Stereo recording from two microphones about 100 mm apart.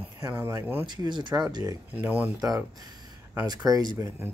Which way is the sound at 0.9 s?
50° right (ahead or behind).